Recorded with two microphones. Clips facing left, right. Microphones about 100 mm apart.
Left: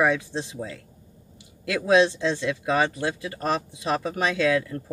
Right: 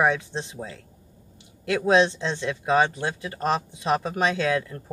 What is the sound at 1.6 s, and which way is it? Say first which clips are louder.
Speech: even; 30° right (ahead or behind).